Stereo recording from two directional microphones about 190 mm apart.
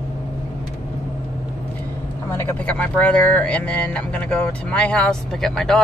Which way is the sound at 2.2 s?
10° left (ahead or behind).